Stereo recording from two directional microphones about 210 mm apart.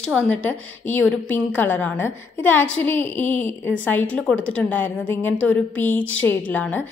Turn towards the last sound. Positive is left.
turn(degrees=5)  # may be behind; listen again after turning